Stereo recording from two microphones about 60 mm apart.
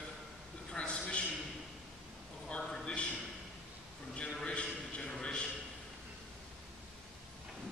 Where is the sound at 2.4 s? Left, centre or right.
Centre.